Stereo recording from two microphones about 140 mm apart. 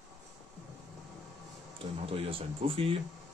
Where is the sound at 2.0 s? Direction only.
40° right (ahead or behind).